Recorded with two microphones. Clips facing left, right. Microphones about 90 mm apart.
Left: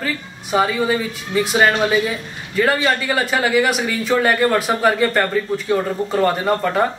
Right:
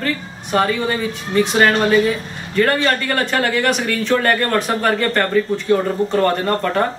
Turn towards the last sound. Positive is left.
turn(degrees=5)  # may be behind; listen again after turning